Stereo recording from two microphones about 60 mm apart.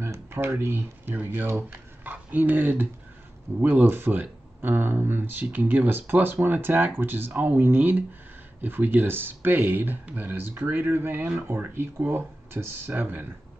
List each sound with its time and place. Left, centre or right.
0.0 s speech: right
1.7 s speech: right